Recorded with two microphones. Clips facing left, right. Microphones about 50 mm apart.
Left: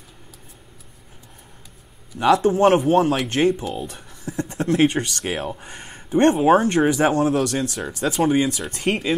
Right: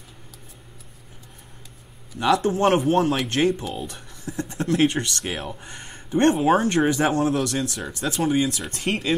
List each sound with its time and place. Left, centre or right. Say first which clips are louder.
2.1 s speech: left 4 dB; centre
4.6 s speech: left 2 dB; centre
5.6 s a sound: left 1 dB; centre
6.3 s speech: left 3 dB; centre
7.2 s speech: left 3 dB; centre
7.4 s speech: left 2 dB; centre